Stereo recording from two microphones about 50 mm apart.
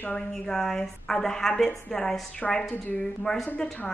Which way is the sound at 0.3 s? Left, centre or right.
Centre.